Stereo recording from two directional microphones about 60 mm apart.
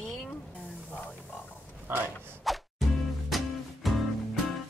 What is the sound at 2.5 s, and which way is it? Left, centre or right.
Music, centre.